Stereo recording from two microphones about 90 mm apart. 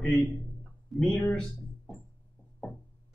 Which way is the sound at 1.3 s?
5° left (ahead or behind).